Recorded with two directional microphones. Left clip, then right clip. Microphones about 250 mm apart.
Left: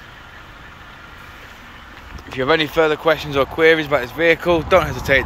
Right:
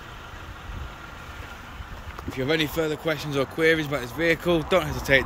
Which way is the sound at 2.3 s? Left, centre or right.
Centre.